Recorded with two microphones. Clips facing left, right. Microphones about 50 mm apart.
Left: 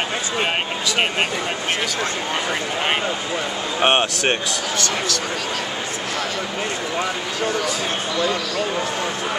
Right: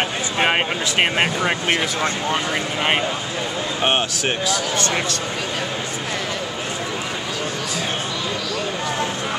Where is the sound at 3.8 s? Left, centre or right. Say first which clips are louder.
Left 3 dB; centre.